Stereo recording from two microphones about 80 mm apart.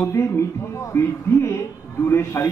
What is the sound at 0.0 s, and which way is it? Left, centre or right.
A man's voice, left.